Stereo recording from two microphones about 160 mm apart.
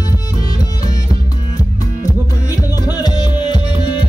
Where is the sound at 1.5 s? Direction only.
20° left (ahead or behind).